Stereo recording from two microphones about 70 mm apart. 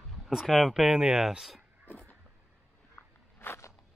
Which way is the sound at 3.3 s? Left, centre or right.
Left.